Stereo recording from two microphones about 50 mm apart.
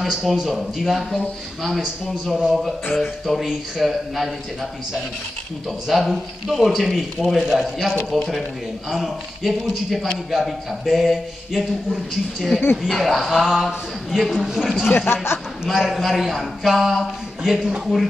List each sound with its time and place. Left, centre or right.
0.0 s speech: centre
5.9 s speech: centre
14.9 s speech: left
15.6 s speech: centre